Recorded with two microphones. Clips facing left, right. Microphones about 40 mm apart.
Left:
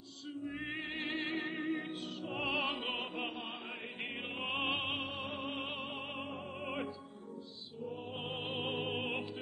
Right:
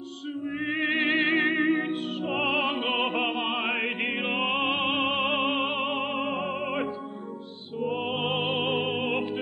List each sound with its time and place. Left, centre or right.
0.5 s music: right